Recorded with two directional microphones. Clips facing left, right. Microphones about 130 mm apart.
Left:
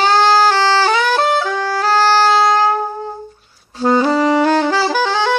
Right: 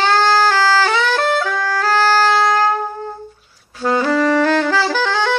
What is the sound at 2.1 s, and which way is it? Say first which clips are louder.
Music: left 2 dB; 15° left (ahead or behind).